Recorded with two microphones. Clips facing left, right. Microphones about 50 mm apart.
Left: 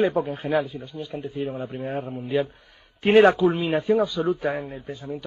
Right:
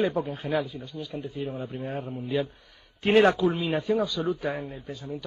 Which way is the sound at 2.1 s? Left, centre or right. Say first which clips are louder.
Left 3 dB; left.